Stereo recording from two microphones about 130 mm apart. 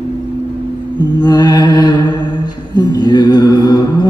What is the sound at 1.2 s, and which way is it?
Mantra, 30° left (ahead or behind).